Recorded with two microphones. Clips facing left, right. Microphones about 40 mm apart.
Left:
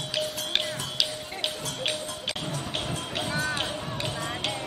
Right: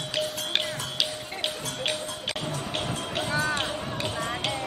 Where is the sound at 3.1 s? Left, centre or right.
Centre.